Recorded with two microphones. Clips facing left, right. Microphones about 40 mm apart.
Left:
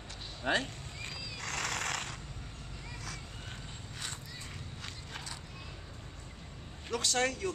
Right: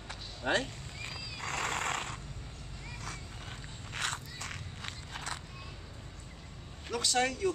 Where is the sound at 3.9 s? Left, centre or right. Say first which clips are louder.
Right 8 dB; right.